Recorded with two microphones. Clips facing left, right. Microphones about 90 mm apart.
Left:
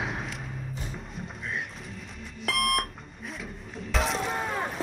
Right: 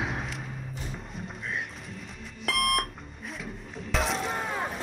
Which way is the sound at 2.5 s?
Centre (ahead or behind).